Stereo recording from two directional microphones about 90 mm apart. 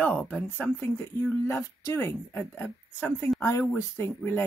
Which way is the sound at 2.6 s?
15° left (ahead or behind).